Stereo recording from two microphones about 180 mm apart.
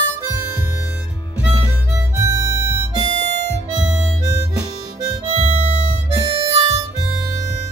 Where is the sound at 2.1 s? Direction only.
20° right (ahead or behind).